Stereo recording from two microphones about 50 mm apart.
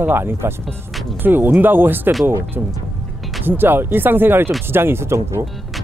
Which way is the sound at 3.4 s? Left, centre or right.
Right.